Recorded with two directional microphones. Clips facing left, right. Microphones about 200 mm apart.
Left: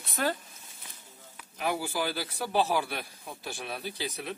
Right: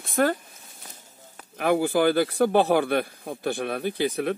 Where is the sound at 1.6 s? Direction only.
55° right (ahead or behind).